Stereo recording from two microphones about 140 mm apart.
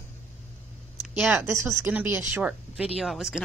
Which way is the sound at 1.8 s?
15° right (ahead or behind).